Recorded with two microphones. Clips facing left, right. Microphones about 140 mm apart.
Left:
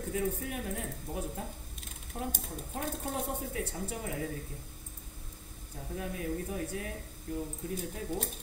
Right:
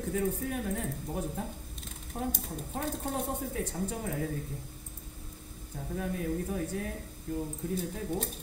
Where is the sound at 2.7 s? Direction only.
45° right (ahead or behind).